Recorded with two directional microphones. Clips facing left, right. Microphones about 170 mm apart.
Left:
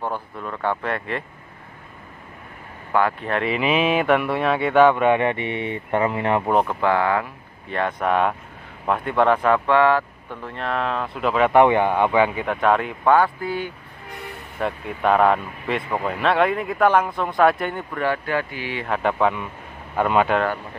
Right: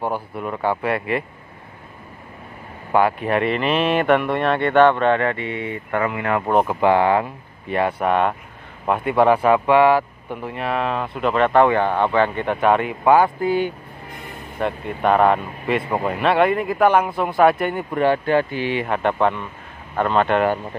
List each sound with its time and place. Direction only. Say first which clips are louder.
0.0 s speech: right 4 dB; 10° right (ahead or behind)
2.9 s speech: right 3 dB; 15° right (ahead or behind)
3.4 s speech: left 2 dB; 5° left (ahead or behind); by 6.4 s 25° left (ahead or behind)
6.4 s speech: right 2 dB; centre (ahead or behind)
6.8 s speech: right 4 dB; 20° right (ahead or behind)
7.7 s speech: right 2 dB; 5° right (ahead or behind)
11.5 s speech: left 2 dB; 15° left (ahead or behind)
12.4 s speech: right 2 dB; centre (ahead or behind)
13.4 s speech: right 7 dB; 20° right (ahead or behind)
14.6 s speech: right 2 dB; centre (ahead or behind)
17.9 s speech: right 6 dB; 25° right (ahead or behind)
18.9 s speech: left 1 dB; centre (ahead or behind)